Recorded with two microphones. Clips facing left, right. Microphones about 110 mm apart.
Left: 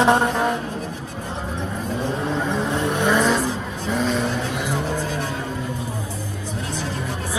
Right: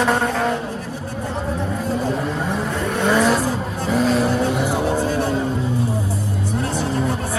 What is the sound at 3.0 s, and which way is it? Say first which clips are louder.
Vehicle: right 3 dB; 5° right (ahead or behind).